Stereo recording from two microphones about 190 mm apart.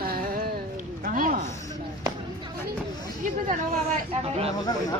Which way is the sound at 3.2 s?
45° right (ahead or behind).